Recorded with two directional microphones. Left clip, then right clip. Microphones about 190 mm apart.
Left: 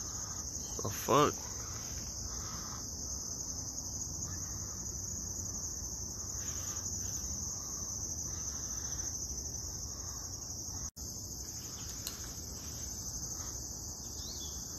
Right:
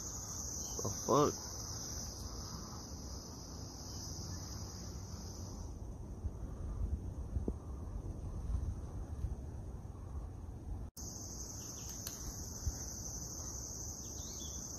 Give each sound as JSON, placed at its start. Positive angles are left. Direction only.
{"t": 0.8, "sound": "speech", "side_deg": 25}